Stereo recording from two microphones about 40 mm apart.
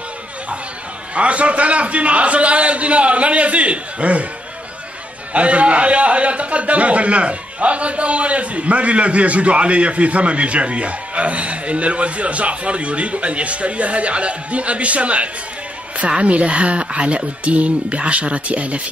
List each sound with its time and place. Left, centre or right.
1.1 s a man's voice: right
5.3 s a man's voice: right